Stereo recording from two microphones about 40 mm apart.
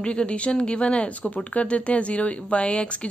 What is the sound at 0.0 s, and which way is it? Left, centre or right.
Speech, left.